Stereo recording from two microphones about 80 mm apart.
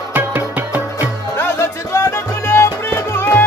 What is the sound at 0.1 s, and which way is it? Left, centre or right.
Music, right.